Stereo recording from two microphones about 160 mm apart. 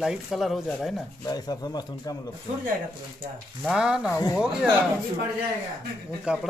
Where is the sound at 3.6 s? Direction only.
5° right (ahead or behind).